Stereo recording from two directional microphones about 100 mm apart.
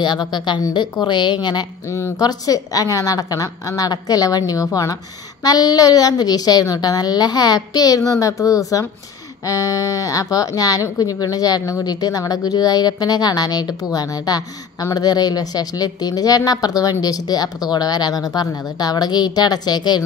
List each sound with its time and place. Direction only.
0.0 s speech: 45° left (ahead or behind)
1.9 s a woman's voice: 30° left (ahead or behind); by 20.0 s 45° left (ahead or behind)